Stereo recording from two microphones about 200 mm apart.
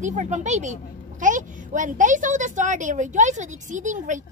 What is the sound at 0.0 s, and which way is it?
Speech, 35° right (ahead or behind).